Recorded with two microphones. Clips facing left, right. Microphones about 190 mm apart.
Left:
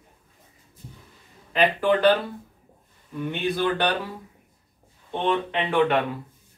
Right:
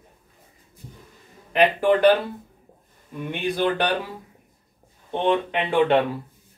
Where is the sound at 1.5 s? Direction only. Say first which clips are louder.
Right 2 dB; 15° right (ahead or behind).